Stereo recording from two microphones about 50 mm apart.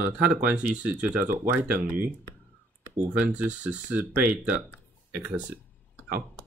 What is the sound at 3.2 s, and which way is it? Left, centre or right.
Speech, right.